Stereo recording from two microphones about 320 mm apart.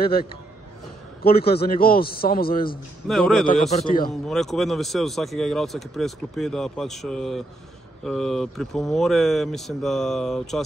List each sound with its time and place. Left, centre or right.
0.0 s a man's voice: left
3.1 s speech: centre
3.7 s a man's voice: left
4.1 s speech: centre